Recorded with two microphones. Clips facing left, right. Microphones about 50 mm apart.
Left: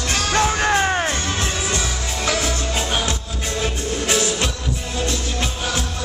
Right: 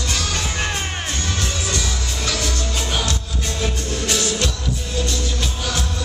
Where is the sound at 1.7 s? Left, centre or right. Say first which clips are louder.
Left 1 dB; left.